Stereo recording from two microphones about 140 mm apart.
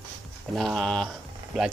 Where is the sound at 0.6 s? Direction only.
Centre (ahead or behind).